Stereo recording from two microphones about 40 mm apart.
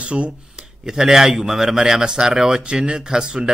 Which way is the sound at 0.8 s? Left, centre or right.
Centre.